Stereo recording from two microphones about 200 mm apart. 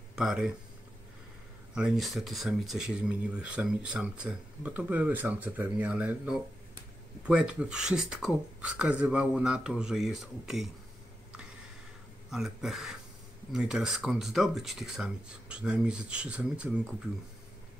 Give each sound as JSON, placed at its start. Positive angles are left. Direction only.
{"t": 0.2, "sound": "speech", "side_deg": 0}
{"t": 1.8, "sound": "speech", "side_deg": 0}
{"t": 12.3, "sound": "speech", "side_deg": 0}